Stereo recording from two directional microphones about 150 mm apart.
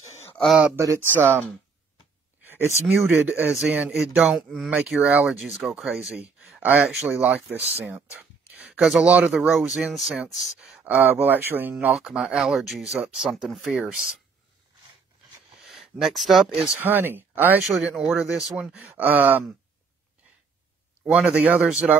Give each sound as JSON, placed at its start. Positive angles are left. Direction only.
{"t": 0.7, "sound": "speech", "side_deg": -20}
{"t": 2.4, "sound": "speech", "side_deg": -15}
{"t": 15.6, "sound": "speech", "side_deg": 0}
{"t": 16.8, "sound": "speech", "side_deg": -15}
{"t": 17.6, "sound": "speech", "side_deg": -5}
{"t": 21.0, "sound": "speech", "side_deg": -10}